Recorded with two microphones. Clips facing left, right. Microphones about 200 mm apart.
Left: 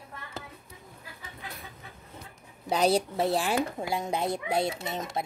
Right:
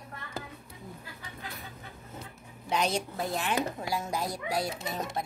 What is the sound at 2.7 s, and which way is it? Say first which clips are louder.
A child's voice: left 5 dB; 35° left (ahead or behind).